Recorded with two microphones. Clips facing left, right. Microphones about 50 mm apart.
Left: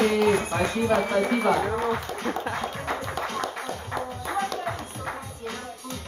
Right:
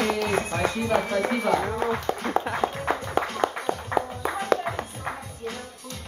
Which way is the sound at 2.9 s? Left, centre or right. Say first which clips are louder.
Right 3 dB; right.